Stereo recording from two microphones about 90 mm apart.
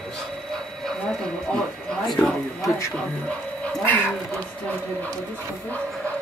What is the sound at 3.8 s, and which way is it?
Speech, 20° left (ahead or behind).